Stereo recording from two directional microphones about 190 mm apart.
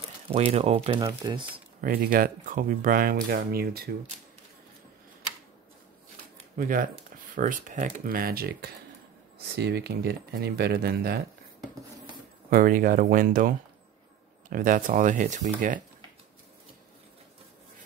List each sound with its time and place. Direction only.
0.3 s speech: 30° right (ahead or behind)
1.8 s speech: 50° right (ahead or behind)
6.5 s speech: 45° right (ahead or behind)
12.4 s speech: 50° right (ahead or behind)